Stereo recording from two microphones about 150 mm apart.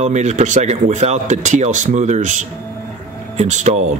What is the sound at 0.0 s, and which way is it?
Speech, 50° right (ahead or behind).